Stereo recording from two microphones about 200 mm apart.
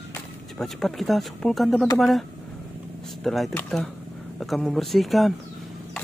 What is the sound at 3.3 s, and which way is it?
Speech, centre (ahead or behind).